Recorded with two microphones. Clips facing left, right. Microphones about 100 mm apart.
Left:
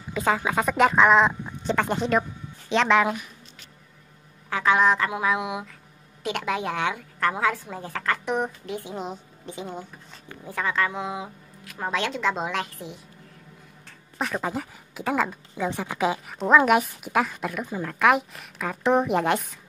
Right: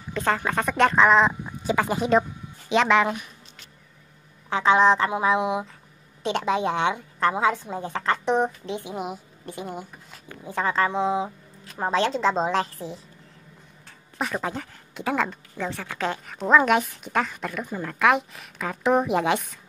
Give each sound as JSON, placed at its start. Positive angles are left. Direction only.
{"t": 0.1, "sound": "speech", "side_deg": 5}
{"t": 4.5, "sound": "a woman's voice", "side_deg": -25}
{"t": 8.9, "sound": "speech", "side_deg": -10}
{"t": 10.5, "sound": "a woman's voice", "side_deg": -35}
{"t": 13.8, "sound": "speech", "side_deg": 0}